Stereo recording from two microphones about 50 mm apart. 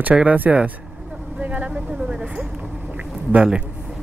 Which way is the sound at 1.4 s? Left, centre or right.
Right.